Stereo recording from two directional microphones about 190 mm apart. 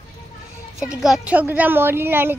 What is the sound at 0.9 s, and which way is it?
A woman's voice, 5° right (ahead or behind).